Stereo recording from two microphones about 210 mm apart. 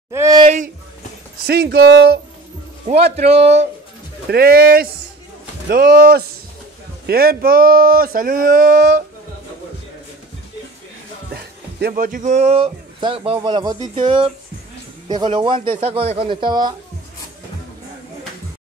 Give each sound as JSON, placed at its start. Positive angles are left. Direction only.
{"t": 0.1, "sound": "a sound", "side_deg": -15}
{"t": 1.4, "sound": "speech", "side_deg": -50}
{"t": 2.9, "sound": "a man's voice", "side_deg": -30}
{"t": 4.3, "sound": "speech", "side_deg": -45}
{"t": 11.9, "sound": "speech", "side_deg": -40}